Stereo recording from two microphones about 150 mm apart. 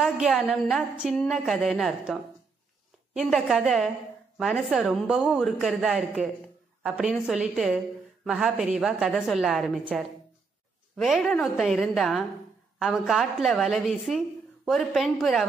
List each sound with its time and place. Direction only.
0.0 s a woman's voice: centre (ahead or behind)
3.2 s a woman's voice: centre (ahead or behind)